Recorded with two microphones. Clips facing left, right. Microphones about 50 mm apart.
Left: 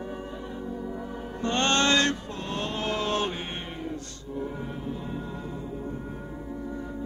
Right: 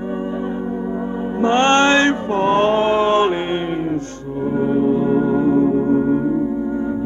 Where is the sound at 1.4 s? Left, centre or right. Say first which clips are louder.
Right 10 dB; right.